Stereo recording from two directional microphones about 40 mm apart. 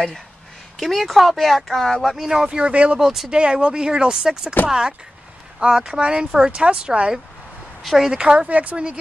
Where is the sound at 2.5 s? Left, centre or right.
Right.